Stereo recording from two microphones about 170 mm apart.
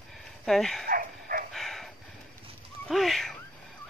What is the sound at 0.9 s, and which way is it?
Dog, 55° right (ahead or behind).